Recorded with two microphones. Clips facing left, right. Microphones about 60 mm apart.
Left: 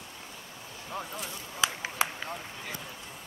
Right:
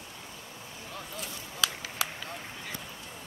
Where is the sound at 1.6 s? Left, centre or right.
Left.